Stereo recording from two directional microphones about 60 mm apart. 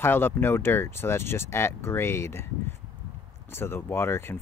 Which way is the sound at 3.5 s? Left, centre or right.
Left.